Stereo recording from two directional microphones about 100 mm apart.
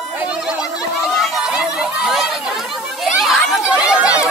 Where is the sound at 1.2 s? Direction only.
Centre (ahead or behind).